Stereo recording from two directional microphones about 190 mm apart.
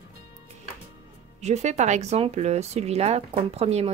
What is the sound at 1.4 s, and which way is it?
Speech, 35° right (ahead or behind).